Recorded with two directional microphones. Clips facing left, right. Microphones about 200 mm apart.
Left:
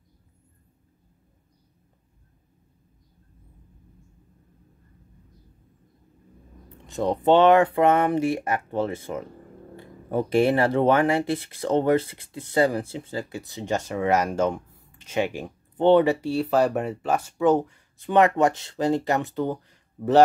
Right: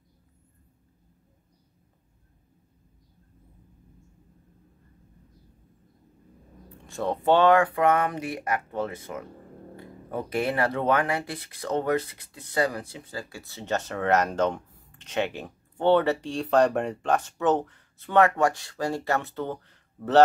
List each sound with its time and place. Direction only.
6.9 s speech: 15° left (ahead or behind)